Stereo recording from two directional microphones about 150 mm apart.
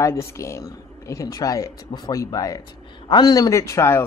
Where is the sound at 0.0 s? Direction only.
20° left (ahead or behind).